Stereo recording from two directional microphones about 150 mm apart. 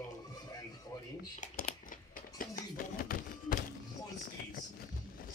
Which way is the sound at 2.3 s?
75° left (ahead or behind).